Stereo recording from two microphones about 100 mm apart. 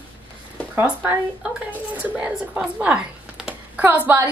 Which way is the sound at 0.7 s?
20° right (ahead or behind).